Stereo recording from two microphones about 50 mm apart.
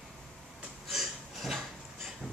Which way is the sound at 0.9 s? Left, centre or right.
Centre.